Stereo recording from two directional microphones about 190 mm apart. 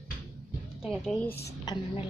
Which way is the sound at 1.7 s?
30° left (ahead or behind).